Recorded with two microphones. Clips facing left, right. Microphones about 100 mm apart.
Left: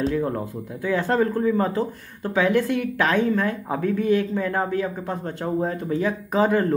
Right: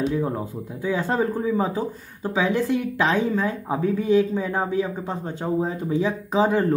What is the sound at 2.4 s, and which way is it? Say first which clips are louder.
Speech: left 1 dB; 65° left (ahead or behind).